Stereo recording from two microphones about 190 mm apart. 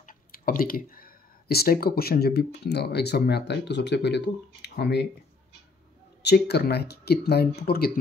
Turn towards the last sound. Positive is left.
turn(degrees=55)  # may be behind; listen again after turning